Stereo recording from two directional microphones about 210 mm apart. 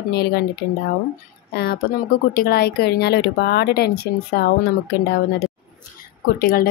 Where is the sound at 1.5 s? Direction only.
50° left (ahead or behind).